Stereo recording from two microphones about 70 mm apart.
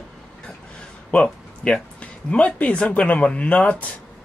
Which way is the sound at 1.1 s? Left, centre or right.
Centre.